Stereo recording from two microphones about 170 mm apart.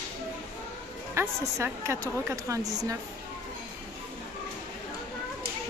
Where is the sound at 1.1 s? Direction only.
15° right (ahead or behind).